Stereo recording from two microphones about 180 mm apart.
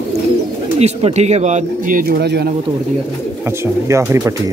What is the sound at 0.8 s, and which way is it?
Speech, 35° right (ahead or behind).